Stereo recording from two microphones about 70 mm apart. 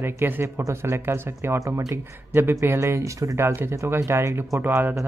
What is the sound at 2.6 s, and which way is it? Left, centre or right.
Speech, right.